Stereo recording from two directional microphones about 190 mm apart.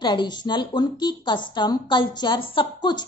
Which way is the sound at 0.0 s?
25° left (ahead or behind).